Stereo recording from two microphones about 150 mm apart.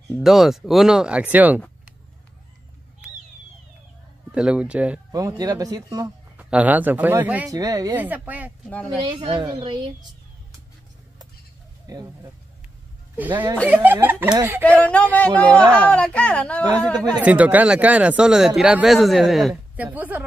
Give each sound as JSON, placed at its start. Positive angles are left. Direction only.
{"t": 0.2, "sound": "speech", "side_deg": 0}
{"t": 4.3, "sound": "speech", "side_deg": -5}
{"t": 5.1, "sound": "speech", "side_deg": -25}
{"t": 6.3, "sound": "speech", "side_deg": -10}
{"t": 7.4, "sound": "speech", "side_deg": -25}
{"t": 7.9, "sound": "speech", "side_deg": -10}
{"t": 8.6, "sound": "speech", "side_deg": 10}
{"t": 9.0, "sound": "speech", "side_deg": -30}
{"t": 11.9, "sound": "speech", "side_deg": -25}
{"t": 13.1, "sound": "speech", "side_deg": -10}
{"t": 14.8, "sound": "speech", "side_deg": 10}
{"t": 17.2, "sound": "speech", "side_deg": -10}